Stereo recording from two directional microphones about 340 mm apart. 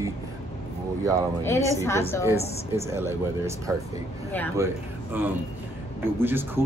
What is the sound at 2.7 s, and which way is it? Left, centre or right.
Speech, centre.